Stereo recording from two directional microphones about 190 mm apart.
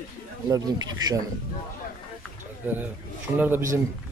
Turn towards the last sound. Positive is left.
turn(degrees=-10)  # may be behind; listen again after turning